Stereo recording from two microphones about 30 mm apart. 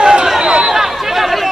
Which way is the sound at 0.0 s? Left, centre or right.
Right.